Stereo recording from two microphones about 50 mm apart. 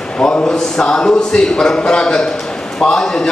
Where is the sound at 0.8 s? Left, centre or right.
Centre.